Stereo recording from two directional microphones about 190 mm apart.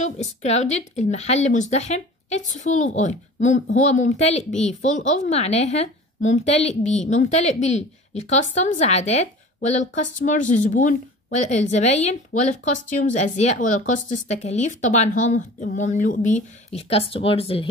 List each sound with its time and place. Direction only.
0.0 s a woman's voice: 35° left (ahead or behind)